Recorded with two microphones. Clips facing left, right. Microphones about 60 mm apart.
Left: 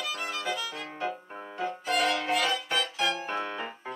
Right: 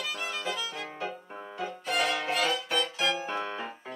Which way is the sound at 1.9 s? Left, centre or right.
Centre.